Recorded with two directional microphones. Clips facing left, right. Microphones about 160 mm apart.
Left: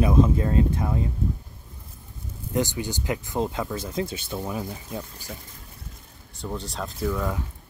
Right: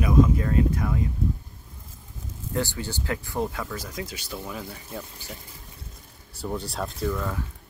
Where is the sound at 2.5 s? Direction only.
15° left (ahead or behind).